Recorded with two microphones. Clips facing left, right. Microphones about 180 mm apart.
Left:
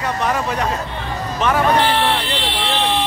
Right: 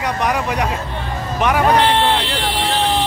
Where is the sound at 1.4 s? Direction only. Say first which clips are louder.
Right 2 dB; 15° right (ahead or behind).